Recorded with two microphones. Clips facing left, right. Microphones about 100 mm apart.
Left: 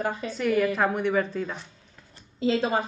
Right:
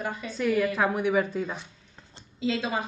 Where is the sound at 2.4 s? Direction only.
40° left (ahead or behind).